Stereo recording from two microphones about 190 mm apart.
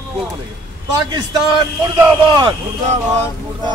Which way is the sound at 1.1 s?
20° right (ahead or behind).